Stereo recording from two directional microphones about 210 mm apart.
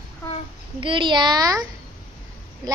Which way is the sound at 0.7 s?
25° right (ahead or behind).